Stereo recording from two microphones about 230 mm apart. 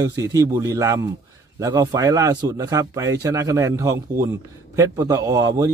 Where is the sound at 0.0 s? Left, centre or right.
Centre.